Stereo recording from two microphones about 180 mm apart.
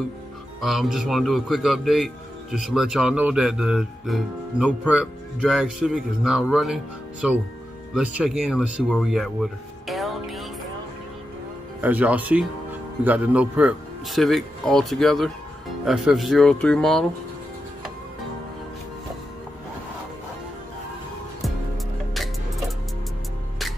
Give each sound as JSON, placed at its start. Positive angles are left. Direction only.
{"t": 0.6, "sound": "speech", "side_deg": 0}
{"t": 11.8, "sound": "speech", "side_deg": -10}